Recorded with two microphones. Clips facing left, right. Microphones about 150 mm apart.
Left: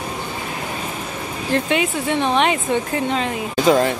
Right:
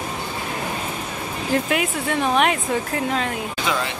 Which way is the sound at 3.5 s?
40° left (ahead or behind).